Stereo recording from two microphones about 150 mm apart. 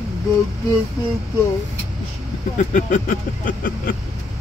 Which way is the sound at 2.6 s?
60° left (ahead or behind).